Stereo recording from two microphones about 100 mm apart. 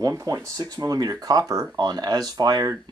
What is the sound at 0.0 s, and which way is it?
Speech, 35° right (ahead or behind).